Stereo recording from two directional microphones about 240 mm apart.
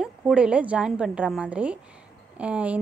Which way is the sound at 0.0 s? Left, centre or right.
Centre.